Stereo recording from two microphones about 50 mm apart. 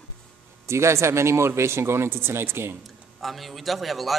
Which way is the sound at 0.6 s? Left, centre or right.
Right.